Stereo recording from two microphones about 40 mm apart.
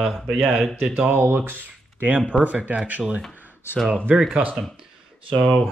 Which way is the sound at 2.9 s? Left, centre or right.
Right.